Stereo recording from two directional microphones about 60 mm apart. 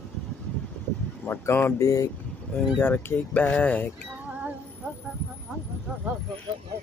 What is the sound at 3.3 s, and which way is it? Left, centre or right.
Speech, left.